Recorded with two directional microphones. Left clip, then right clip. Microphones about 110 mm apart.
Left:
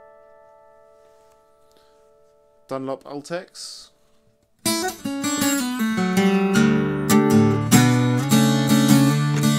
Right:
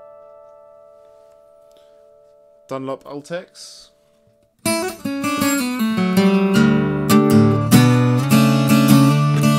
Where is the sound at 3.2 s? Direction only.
15° left (ahead or behind).